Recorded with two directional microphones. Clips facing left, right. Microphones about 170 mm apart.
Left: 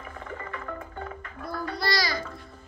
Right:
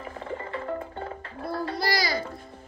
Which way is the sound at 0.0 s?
30° right (ahead or behind).